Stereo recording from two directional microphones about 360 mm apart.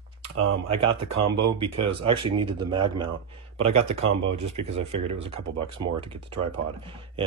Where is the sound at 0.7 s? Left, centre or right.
Centre.